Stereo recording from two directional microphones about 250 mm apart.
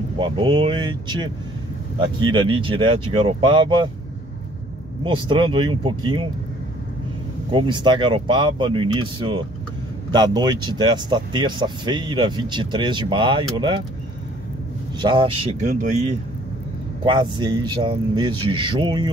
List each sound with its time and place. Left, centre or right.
0.2 s a man's voice: centre
5.0 s a man's voice: centre
7.5 s a man's voice: centre
15.0 s a man's voice: centre
17.0 s a man's voice: centre